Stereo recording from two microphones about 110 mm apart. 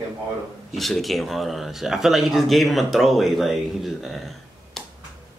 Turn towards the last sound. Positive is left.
turn(degrees=0)  # may be behind; listen again after turning